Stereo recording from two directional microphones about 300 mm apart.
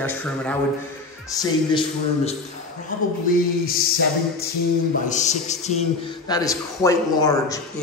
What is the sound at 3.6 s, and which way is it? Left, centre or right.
Music, left.